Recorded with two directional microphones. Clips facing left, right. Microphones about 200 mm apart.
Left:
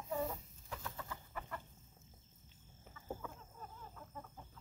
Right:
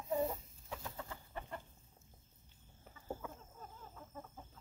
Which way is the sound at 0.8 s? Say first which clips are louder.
Even; 25° right (ahead or behind).